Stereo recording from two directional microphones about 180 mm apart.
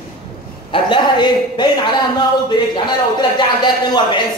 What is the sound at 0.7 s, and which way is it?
A man's voice, 25° left (ahead or behind).